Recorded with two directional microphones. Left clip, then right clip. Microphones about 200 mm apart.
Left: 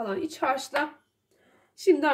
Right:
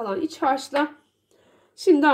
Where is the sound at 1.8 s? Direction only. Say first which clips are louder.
Right 5 dB; 25° right (ahead or behind).